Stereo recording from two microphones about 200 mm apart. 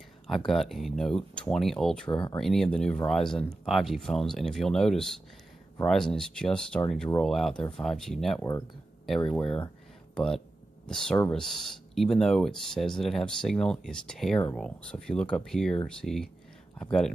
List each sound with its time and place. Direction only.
0.5 s speech: centre (ahead or behind)
2.0 s speech: 25° left (ahead or behind)
2.3 s speech: centre (ahead or behind)